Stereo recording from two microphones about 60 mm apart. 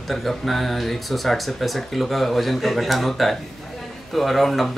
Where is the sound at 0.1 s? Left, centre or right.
Centre.